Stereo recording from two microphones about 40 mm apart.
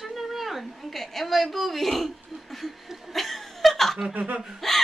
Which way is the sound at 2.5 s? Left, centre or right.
Centre.